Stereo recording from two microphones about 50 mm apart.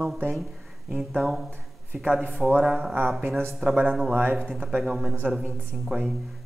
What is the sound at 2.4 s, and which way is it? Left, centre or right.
Speech, centre.